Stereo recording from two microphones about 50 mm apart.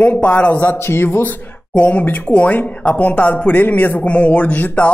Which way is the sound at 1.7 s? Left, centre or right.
Left.